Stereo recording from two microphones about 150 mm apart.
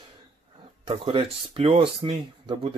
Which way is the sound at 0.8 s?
35° right (ahead or behind).